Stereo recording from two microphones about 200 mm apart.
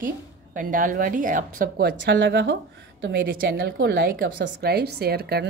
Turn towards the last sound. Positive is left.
turn(degrees=-50)  # may be behind; listen again after turning